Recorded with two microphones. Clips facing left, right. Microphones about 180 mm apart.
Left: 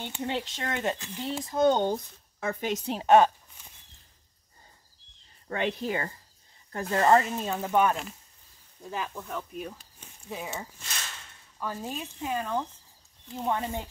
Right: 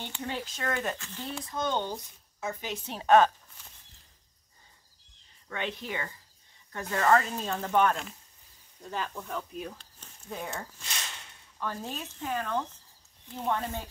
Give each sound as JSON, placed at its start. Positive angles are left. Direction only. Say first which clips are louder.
{"t": 0.0, "sound": "speech", "louder": "left 4 dB", "side_deg": 20}
{"t": 1.4, "sound": "speech", "louder": "left 9 dB", "side_deg": 30}
{"t": 1.8, "sound": "speech", "louder": "left 6 dB", "side_deg": 55}
{"t": 3.0, "sound": "a sound", "louder": "left 1 dB", "side_deg": 15}
{"t": 5.5, "sound": "speech", "louder": "left 6 dB", "side_deg": 40}
{"t": 7.2, "sound": "speech", "louder": "left 2 dB", "side_deg": 10}